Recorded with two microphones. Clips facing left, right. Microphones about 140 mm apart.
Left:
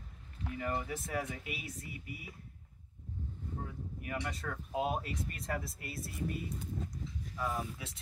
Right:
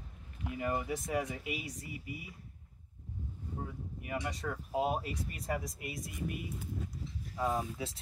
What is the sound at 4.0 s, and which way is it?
Speech, 10° right (ahead or behind).